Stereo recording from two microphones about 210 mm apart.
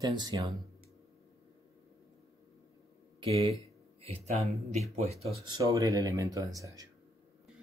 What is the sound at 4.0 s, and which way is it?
Speech, 30° right (ahead or behind).